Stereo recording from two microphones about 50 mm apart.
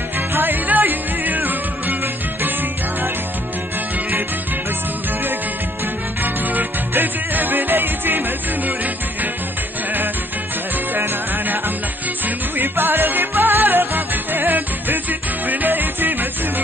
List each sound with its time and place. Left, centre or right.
0.3 s music: right
6.2 s music: right
11.0 s music: right